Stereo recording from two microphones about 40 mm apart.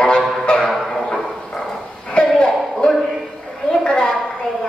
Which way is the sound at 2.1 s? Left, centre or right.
Left.